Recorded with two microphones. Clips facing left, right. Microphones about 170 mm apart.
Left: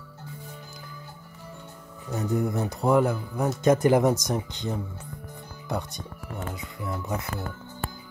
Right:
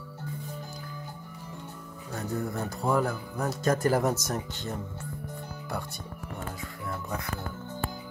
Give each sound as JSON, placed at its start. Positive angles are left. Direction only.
{"t": 2.1, "sound": "a man's voice", "side_deg": 20}
{"t": 6.9, "sound": "a man's voice", "side_deg": 20}